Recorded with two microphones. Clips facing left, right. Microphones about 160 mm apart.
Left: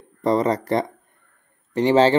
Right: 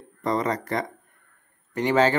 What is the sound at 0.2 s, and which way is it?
Speech, 30° left (ahead or behind).